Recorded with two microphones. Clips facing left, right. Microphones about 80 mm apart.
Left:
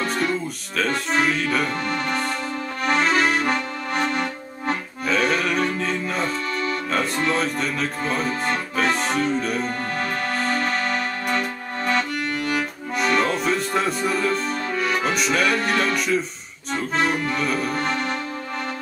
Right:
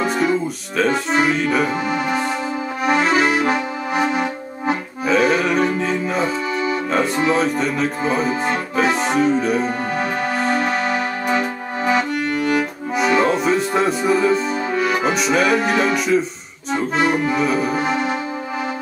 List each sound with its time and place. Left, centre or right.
0.0 s music: centre
2.8 s accordion: centre